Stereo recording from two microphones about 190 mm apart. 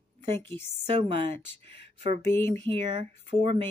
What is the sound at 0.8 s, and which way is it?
Speech, 35° right (ahead or behind).